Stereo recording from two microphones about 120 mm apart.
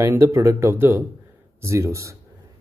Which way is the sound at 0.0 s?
25° right (ahead or behind).